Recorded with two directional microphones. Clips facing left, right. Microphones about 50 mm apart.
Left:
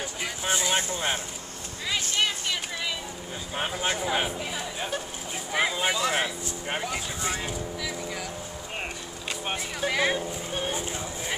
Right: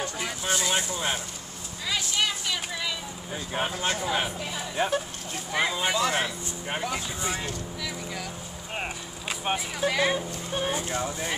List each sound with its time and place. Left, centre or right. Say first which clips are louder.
0.0 s vehicle: right 1 dB; centre
0.7 s speech: left 1 dB; left
2.1 s a sound: left 1 dB; centre
3.5 s speech: even; centre
4.7 s speech: right 9 dB; centre
5.5 s speech: even; centre
9.3 s speech: right 3 dB; centre